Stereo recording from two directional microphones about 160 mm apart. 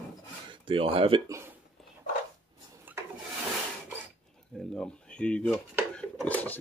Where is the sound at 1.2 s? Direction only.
20° right (ahead or behind).